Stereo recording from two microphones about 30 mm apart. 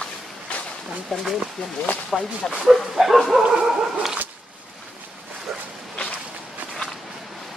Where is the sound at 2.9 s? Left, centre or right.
Centre.